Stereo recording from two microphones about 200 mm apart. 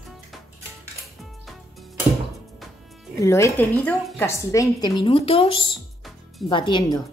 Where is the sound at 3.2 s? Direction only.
15° left (ahead or behind).